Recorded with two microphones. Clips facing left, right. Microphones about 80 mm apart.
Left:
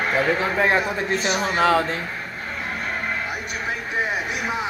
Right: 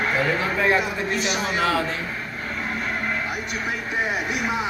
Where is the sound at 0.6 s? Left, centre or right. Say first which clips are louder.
Left 1 dB; left.